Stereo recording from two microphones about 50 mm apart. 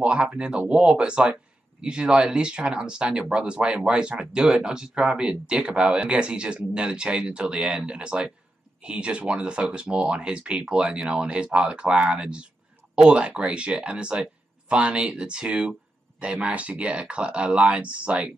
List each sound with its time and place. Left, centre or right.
0.0 s speech: centre